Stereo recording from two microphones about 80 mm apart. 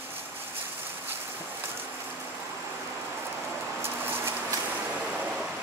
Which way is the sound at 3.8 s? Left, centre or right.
Right.